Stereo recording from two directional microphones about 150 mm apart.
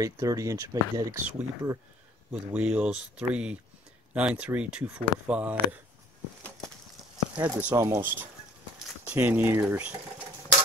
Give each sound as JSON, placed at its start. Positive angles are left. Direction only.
{"t": 0.0, "sound": "speech", "side_deg": -20}
{"t": 7.3, "sound": "speech", "side_deg": -15}